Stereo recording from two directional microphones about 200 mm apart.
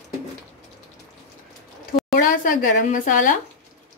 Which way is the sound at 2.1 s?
45° left (ahead or behind).